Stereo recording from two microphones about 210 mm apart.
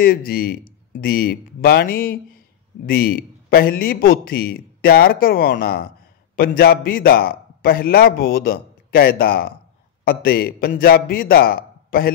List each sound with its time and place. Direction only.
0.0 s a man's voice: 45° left (ahead or behind)